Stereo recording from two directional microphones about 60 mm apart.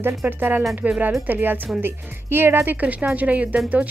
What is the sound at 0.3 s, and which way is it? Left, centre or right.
Speech, right.